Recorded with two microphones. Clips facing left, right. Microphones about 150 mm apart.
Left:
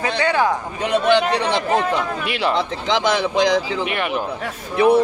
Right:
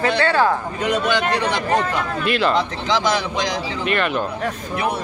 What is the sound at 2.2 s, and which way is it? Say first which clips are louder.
A man's voice: right 6 dB; 15° left (ahead or behind).